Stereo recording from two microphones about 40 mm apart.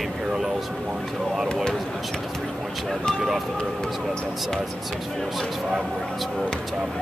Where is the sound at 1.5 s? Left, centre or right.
Centre.